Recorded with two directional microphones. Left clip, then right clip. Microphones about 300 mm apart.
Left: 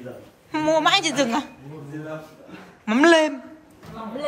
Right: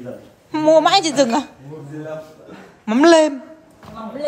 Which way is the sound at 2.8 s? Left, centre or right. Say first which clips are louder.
Right 4 dB; centre.